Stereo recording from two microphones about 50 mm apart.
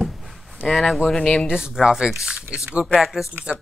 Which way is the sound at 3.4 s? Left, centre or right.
Right.